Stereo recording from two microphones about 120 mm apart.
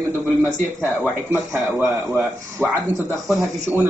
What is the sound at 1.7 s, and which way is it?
Speech, 20° right (ahead or behind).